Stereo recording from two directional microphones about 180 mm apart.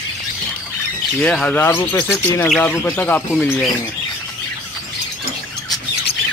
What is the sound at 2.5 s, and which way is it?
Speech, centre (ahead or behind).